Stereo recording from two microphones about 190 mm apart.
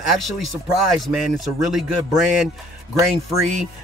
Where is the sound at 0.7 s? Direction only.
Centre (ahead or behind).